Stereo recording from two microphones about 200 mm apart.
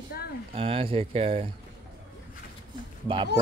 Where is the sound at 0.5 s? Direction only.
25° right (ahead or behind).